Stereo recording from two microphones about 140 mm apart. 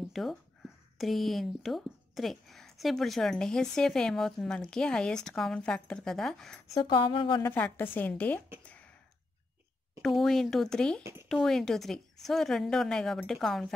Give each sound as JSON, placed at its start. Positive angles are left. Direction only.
{"t": 0.1, "sound": "speech", "side_deg": 0}
{"t": 6.7, "sound": "speech", "side_deg": 35}
{"t": 7.4, "sound": "a woman's voice", "side_deg": 15}
{"t": 8.6, "sound": "a sound", "side_deg": 10}
{"t": 10.0, "sound": "speech", "side_deg": 0}